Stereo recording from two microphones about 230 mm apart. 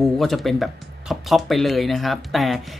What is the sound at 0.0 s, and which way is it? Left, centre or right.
Speech, centre.